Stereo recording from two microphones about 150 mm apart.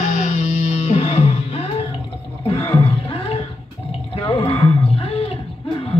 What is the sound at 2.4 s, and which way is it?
Roar, 35° left (ahead or behind).